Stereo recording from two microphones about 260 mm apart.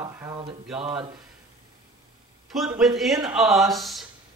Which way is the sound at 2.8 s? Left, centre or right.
Centre.